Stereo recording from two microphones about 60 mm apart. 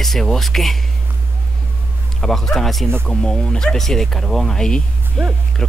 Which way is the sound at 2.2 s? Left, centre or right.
Centre.